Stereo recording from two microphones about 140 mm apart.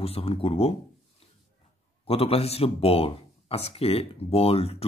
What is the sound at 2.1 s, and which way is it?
Speech, 45° left (ahead or behind).